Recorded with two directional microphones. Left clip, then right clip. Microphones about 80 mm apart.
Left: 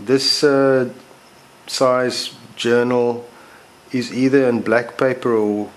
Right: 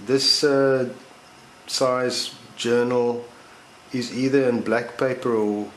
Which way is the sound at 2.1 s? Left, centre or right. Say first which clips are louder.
Left 3 dB; left.